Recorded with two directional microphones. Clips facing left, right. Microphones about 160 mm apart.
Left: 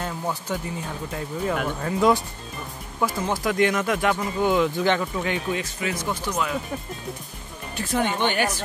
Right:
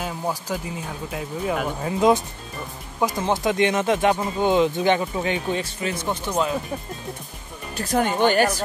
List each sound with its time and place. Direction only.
0.0 s a sound: 10° right (ahead or behind)
1.1 s speech: 10° right (ahead or behind)
1.9 s speech: 20° right (ahead or behind)
7.7 s speech: 40° right (ahead or behind)